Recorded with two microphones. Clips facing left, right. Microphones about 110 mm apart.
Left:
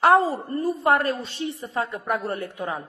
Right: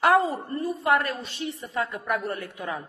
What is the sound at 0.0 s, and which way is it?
A woman's voice, 30° left (ahead or behind).